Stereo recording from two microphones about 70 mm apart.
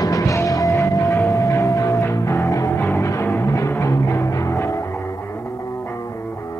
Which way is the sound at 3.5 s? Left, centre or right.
Left.